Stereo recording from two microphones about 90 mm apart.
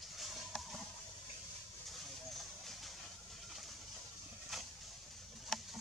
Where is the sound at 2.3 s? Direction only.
Centre (ahead or behind).